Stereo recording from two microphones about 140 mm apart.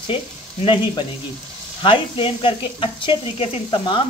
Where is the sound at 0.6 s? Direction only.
40° left (ahead or behind).